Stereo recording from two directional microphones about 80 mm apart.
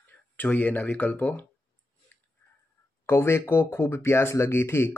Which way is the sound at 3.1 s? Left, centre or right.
Left.